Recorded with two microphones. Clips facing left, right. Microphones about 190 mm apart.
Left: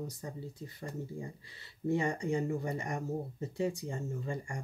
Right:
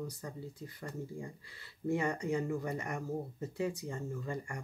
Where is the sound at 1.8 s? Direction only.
30° left (ahead or behind).